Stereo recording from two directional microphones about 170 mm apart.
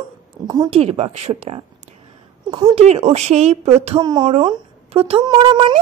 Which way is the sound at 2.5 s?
25° right (ahead or behind).